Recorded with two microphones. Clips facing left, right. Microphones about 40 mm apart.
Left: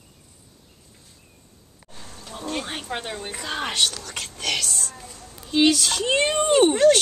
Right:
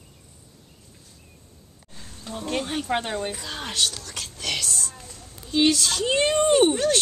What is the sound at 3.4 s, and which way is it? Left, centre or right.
Speech, left.